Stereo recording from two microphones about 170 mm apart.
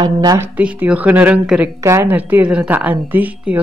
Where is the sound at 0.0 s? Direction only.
20° right (ahead or behind).